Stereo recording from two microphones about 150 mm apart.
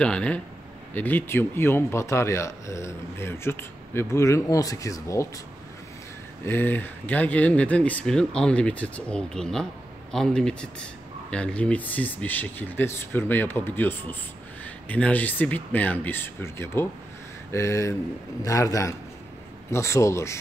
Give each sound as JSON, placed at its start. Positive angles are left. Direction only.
{"t": 0.0, "sound": "speech", "side_deg": 5}
{"t": 6.4, "sound": "speech", "side_deg": 15}